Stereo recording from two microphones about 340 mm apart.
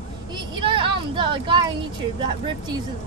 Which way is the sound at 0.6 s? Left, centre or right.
Centre.